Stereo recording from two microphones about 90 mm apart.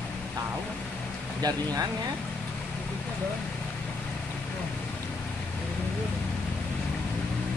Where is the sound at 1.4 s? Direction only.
45° right (ahead or behind).